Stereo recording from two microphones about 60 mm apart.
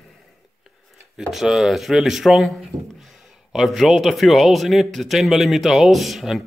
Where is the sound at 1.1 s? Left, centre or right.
Centre.